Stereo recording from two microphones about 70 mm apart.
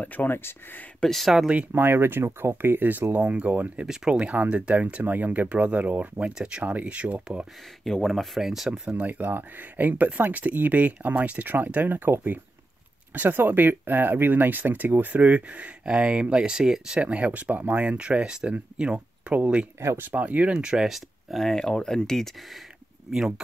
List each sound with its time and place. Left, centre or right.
0.0 s speech: left
1.0 s speech: centre
1.7 s speech: right; by 7.4 s centre
7.8 s speech: centre
9.0 s speech: right; by 22.3 s centre
23.1 s speech: centre